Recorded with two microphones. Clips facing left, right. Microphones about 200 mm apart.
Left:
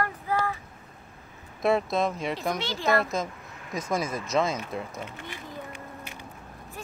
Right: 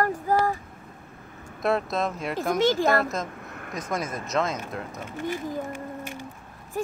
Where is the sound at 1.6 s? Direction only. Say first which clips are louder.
Left 1 dB; centre (ahead or behind).